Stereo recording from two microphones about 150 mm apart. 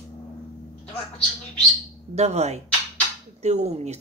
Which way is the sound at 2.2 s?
45° right (ahead or behind).